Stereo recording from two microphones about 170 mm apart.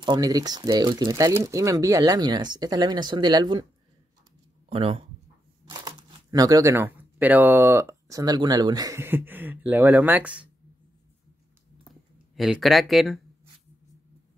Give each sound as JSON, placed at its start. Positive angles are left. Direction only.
{"t": 0.0, "sound": "speech", "side_deg": -25}
{"t": 4.6, "sound": "speech", "side_deg": -35}
{"t": 5.7, "sound": "speech", "side_deg": -20}
{"t": 11.9, "sound": "speech", "side_deg": 0}